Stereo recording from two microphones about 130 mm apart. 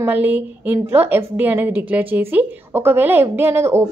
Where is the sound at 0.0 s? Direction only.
15° right (ahead or behind).